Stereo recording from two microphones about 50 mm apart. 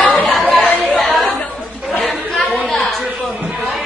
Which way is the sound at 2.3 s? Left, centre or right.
Centre.